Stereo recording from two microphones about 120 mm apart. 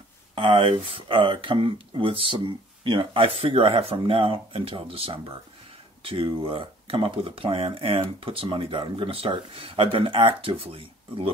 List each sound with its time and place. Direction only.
0.3 s speech: 45° right (ahead or behind)